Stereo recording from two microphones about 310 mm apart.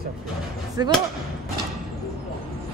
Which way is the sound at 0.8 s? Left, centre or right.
Centre.